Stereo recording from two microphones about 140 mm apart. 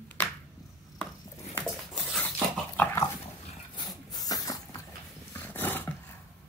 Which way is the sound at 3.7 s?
30° left (ahead or behind).